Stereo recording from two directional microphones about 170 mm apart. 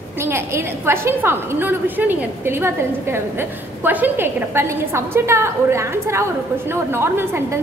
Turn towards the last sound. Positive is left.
turn(degrees=-15)  # may be behind; listen again after turning